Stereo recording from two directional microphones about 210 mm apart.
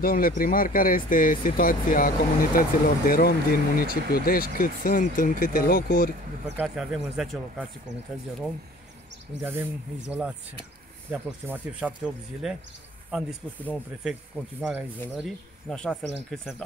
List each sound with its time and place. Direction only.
0.0 s speech: 40° left (ahead or behind)
6.4 s speech: 5° right (ahead or behind)
9.4 s speech: 10° right (ahead or behind)
11.1 s speech: 10° right (ahead or behind)